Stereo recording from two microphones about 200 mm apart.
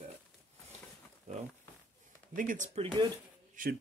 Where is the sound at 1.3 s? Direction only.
35° right (ahead or behind).